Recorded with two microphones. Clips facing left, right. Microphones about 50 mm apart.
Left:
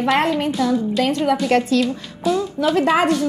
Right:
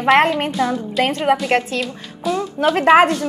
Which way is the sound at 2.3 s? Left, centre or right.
Centre.